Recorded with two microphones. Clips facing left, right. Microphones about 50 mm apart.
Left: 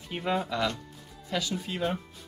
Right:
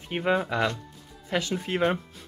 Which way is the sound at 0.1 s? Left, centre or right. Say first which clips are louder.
Right 4 dB; right.